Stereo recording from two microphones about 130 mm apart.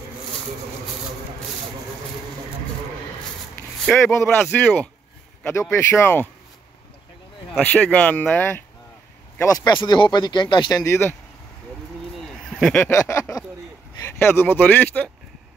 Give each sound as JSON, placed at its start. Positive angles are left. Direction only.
{"t": 3.9, "sound": "speech", "side_deg": 10}
{"t": 7.6, "sound": "speech", "side_deg": 10}
{"t": 9.4, "sound": "speech", "side_deg": 25}
{"t": 9.7, "sound": "speech", "side_deg": 35}
{"t": 12.4, "sound": "speech", "side_deg": 5}
{"t": 12.9, "sound": "speech", "side_deg": 25}